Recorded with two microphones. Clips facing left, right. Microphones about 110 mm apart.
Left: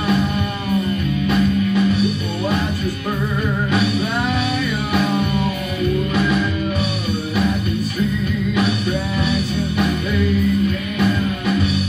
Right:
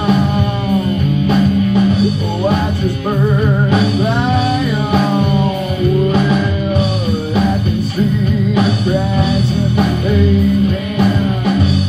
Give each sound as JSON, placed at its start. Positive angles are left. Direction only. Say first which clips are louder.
{"t": 1.2, "sound": "music", "louder": "right 4 dB", "side_deg": -35}
{"t": 3.7, "sound": "music", "louder": "right 5 dB", "side_deg": -30}
{"t": 11.0, "sound": "music", "louder": "right 4 dB", "side_deg": -40}